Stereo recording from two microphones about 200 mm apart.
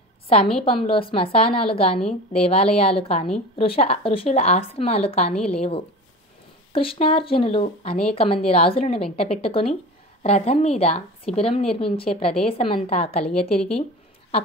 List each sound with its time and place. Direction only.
0.7 s a woman's voice: 25° left (ahead or behind)